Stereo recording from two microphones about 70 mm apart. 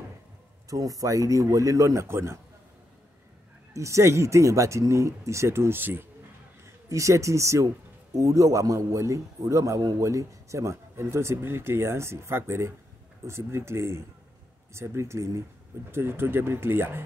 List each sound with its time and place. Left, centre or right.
0.7 s speech: right
2.0 s speech: right
3.7 s speech: right
6.9 s speech: right
15.9 s speech: right